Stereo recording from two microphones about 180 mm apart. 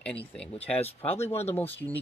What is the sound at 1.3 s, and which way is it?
Speech, 35° left (ahead or behind).